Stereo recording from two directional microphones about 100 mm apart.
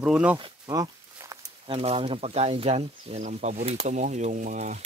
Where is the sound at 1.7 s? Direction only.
80° right.